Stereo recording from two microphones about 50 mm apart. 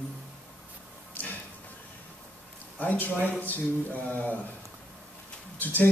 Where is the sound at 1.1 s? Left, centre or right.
Left.